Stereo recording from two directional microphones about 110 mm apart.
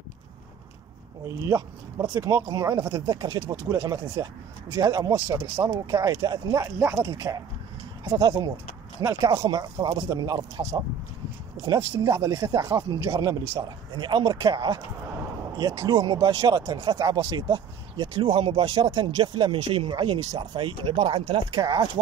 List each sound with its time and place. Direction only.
1.4 s speech: 25° right (ahead or behind)
3.6 s speech: 25° right (ahead or behind)
5.1 s speech: 25° right (ahead or behind)
9.0 s speech: 30° right (ahead or behind)
11.9 s speech: 25° right (ahead or behind)